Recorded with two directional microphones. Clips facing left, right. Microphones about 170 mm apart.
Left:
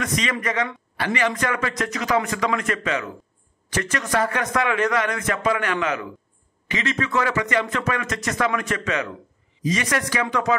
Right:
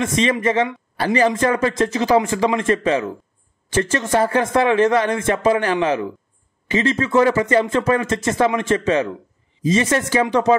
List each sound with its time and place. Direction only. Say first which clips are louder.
0.0 s a man's voice: right 7 dB; 30° right (ahead or behind)